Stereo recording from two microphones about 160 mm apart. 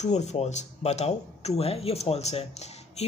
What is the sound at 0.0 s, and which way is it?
Speech, 45° left (ahead or behind).